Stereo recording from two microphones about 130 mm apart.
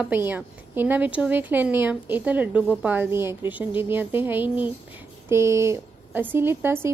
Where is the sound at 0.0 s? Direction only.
15° right (ahead or behind).